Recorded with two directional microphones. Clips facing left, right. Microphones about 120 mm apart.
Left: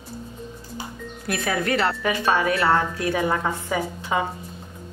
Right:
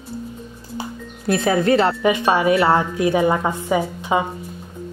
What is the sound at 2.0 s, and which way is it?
A woman's voice, 20° right (ahead or behind).